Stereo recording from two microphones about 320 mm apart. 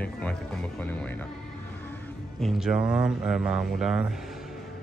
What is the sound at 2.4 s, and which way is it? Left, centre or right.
Speech, centre.